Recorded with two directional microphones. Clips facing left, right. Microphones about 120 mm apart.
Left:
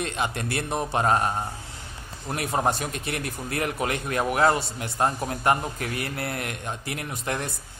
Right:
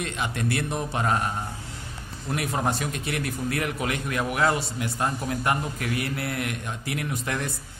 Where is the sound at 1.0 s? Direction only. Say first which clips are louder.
Left 3 dB; 35° left (ahead or behind).